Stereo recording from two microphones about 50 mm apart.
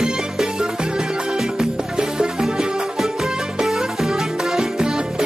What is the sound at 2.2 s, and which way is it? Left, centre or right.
Music, centre.